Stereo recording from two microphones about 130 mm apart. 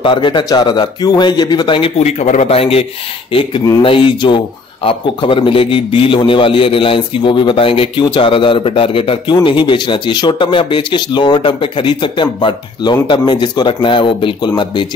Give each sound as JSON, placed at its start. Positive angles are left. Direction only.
{"t": 0.0, "sound": "a man's voice", "side_deg": 40}